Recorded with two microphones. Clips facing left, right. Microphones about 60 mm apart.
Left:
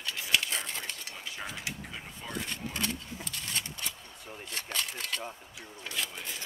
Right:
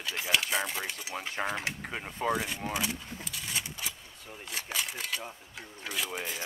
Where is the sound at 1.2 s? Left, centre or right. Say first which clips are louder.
Right 10 dB; right.